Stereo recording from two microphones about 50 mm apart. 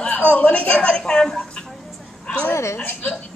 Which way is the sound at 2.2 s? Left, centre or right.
Left.